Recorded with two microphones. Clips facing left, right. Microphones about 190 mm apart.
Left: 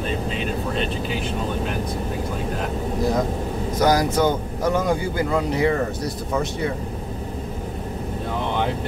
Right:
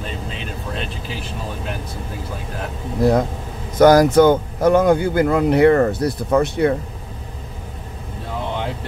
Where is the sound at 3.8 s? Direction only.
55° right (ahead or behind).